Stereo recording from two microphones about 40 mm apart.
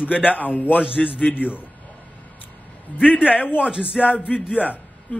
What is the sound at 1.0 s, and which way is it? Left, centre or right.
Speech, centre.